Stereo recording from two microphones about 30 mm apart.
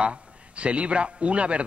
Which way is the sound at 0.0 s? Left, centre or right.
Right.